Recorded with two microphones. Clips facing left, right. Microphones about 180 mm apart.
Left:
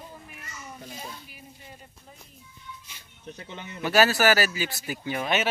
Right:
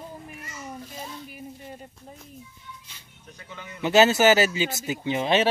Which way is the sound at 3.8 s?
20° right (ahead or behind).